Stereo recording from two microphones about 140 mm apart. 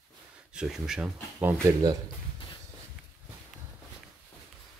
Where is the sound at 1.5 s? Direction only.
25° right (ahead or behind).